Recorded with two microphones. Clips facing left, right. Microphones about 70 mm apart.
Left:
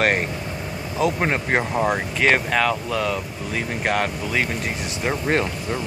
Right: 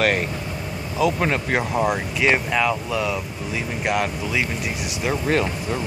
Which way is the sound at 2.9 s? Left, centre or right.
Left.